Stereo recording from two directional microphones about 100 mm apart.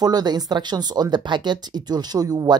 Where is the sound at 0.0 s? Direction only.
45° right (ahead or behind).